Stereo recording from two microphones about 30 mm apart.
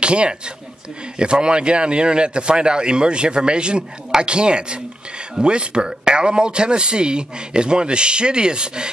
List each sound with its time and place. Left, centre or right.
0.0 s speech: right